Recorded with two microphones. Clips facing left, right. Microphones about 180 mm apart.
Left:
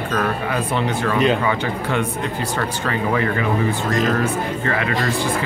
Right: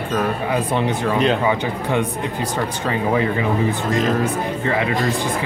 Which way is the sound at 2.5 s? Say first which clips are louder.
Right 1 dB; 20° right (ahead or behind).